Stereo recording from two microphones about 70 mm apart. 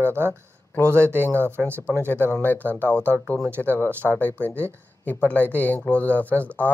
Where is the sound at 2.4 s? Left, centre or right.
Left.